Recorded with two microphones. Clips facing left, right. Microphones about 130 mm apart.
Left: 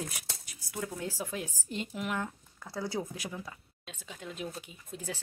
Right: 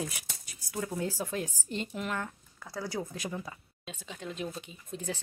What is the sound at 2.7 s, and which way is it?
Speech, 20° left (ahead or behind).